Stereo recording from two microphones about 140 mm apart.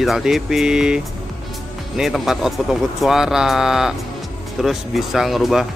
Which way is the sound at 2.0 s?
Centre (ahead or behind).